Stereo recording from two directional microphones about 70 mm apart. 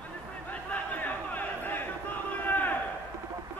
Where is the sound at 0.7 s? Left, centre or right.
Left.